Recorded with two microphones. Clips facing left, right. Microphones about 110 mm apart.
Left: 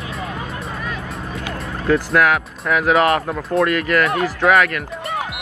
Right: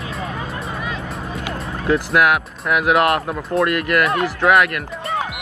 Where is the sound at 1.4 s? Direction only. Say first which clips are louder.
Right 1 dB; 30° right (ahead or behind).